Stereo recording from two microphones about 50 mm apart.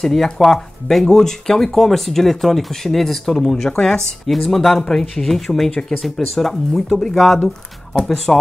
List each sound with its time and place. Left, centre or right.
0.0 s speech: centre
5.7 s speech: centre
6.0 s speech: centre